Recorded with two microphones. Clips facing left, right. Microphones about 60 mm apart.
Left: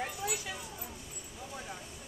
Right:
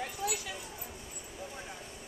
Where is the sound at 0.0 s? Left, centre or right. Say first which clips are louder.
Right 1 dB; left.